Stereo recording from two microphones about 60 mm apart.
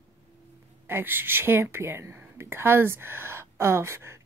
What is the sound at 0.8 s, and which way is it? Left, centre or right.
Speech, right.